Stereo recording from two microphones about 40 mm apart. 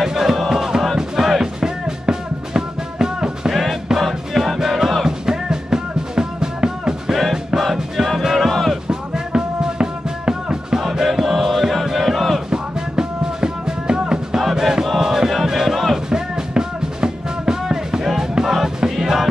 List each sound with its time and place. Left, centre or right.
0.0 s music: centre
3.5 s music: centre
7.6 s music: centre
8.8 s music: right
10.8 s music: centre
11.8 s battle cry: centre
12.4 s music: centre
16.1 s music: centre